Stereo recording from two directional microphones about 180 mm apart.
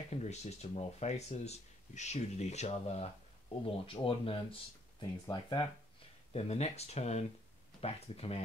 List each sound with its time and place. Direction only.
0.1 s speech: 40° left (ahead or behind)
5.2 s speech: 20° left (ahead or behind)
6.3 s speech: 35° left (ahead or behind)